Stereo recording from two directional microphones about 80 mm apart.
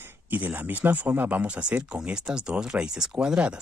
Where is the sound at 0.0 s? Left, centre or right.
Right.